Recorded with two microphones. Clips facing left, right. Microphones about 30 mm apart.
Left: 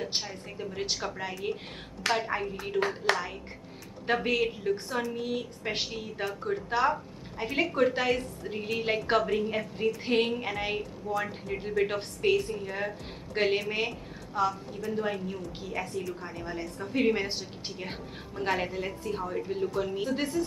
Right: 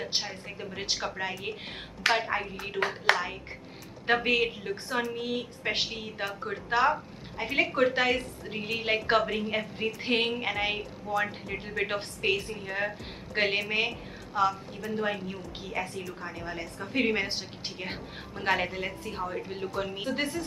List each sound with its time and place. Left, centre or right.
0.0 s a woman's voice: centre